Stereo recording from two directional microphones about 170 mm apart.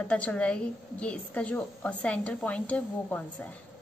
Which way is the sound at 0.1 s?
5° left (ahead or behind).